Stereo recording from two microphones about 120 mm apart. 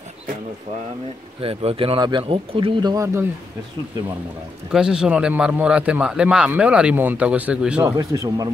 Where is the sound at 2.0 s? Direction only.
35° right (ahead or behind).